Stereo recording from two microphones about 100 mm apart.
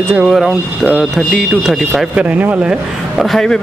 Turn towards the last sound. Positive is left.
turn(degrees=5)  # may be behind; listen again after turning